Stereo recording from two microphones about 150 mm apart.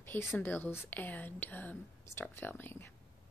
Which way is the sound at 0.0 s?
15° left (ahead or behind).